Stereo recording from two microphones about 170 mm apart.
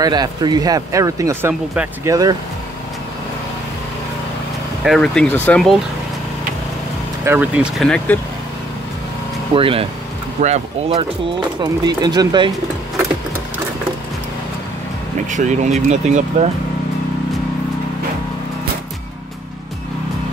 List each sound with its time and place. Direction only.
0.0 s speech: 25° right (ahead or behind)
2.0 s speech: 20° right (ahead or behind)
4.8 s speech: 5° left (ahead or behind)
7.2 s speech: 10° right (ahead or behind)
9.6 s speech: 30° right (ahead or behind)
11.6 s speech: 25° right (ahead or behind)
15.2 s speech: 45° right (ahead or behind)